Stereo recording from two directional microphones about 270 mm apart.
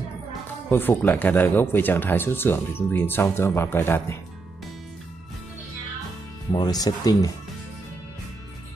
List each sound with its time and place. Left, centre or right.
0.7 s speech: centre
6.5 s speech: centre